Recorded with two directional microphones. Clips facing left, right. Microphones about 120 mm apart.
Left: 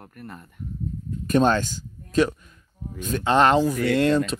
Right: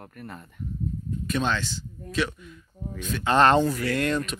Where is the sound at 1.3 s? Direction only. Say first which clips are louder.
Left 8 dB; 45° left (ahead or behind).